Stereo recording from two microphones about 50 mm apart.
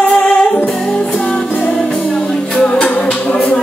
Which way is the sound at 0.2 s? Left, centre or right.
Left.